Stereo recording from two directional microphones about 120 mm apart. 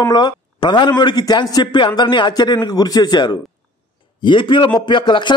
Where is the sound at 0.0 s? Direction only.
35° left (ahead or behind).